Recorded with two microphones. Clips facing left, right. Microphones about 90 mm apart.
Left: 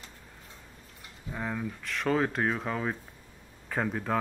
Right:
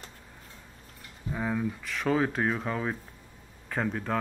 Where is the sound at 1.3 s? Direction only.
Centre (ahead or behind).